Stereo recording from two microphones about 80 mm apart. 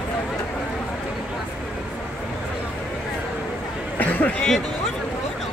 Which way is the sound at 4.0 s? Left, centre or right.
Left.